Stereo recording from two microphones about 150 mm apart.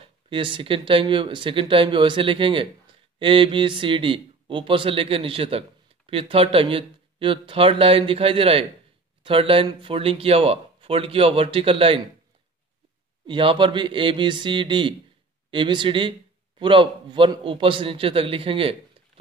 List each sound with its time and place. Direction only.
0.0 s speech: 35° right (ahead or behind)
13.3 s speech: 35° right (ahead or behind)